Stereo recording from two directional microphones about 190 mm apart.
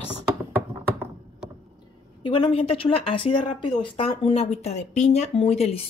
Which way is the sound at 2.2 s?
25° left (ahead or behind).